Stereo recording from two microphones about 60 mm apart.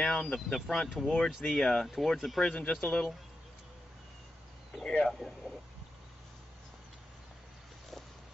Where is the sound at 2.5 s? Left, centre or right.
Centre.